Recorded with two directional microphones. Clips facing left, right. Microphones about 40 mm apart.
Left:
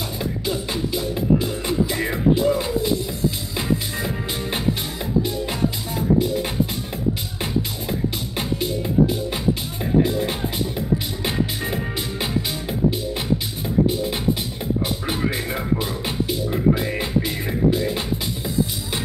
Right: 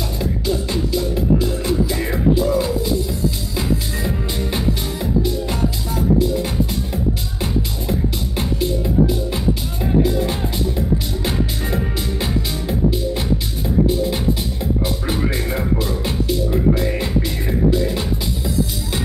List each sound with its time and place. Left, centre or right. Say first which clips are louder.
0.2 s music: right 4 dB; centre
8.4 s music: right 3 dB; left
15.0 s music: right 2 dB; centre